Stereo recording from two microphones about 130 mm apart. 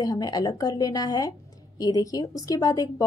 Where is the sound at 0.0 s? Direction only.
30° left (ahead or behind).